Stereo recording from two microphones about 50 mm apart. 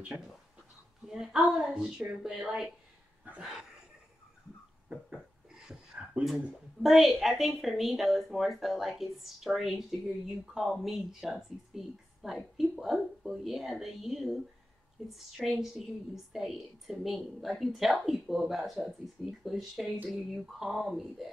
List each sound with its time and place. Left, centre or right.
1.0 s a woman's voice: centre
3.3 s dog: right
5.1 s a sound: centre
6.2 s a woman's voice: centre